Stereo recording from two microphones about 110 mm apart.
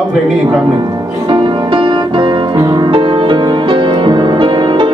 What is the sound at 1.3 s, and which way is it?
Music, 45° right (ahead or behind).